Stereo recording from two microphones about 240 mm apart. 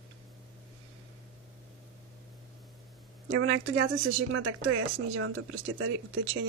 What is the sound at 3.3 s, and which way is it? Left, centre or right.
Speech, right.